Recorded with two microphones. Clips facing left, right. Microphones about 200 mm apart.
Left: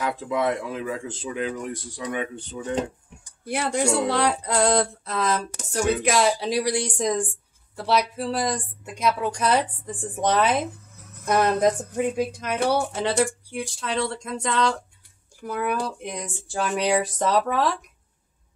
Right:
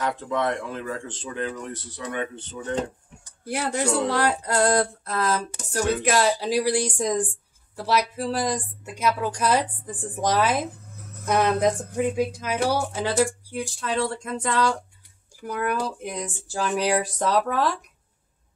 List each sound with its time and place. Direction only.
0.0 s speech: 10° left (ahead or behind)
3.4 s speech: 5° right (ahead or behind)
3.8 s speech: 10° left (ahead or behind)
4.1 s speech: 5° right (ahead or behind)